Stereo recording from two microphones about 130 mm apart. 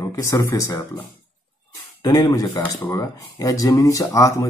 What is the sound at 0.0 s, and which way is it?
Speech, 25° left (ahead or behind).